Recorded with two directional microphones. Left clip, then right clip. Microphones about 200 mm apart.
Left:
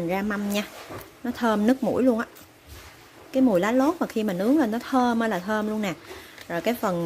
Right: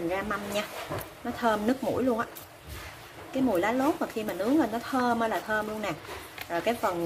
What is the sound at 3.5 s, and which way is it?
A woman's voice, 50° left (ahead or behind).